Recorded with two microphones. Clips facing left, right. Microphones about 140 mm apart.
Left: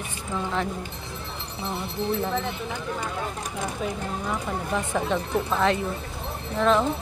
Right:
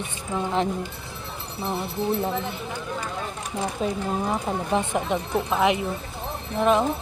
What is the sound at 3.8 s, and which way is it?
Speech, 30° right (ahead or behind).